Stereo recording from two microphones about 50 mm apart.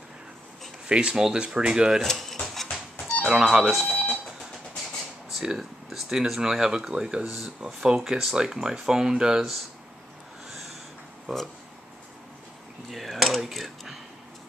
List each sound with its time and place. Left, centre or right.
0.8 s speech: centre
2.0 s a sound: centre
3.3 s speech: centre
3.8 s speech: left
5.4 s speech: centre
11.3 s speech: centre
12.9 s speech: centre